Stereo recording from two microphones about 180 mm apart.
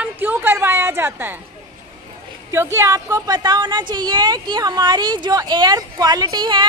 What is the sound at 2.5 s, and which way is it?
A woman's voice, 15° right (ahead or behind).